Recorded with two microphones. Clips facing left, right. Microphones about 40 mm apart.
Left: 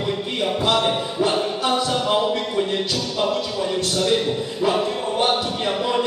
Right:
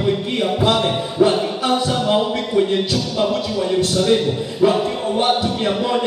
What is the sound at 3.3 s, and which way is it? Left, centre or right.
A man's voice, centre.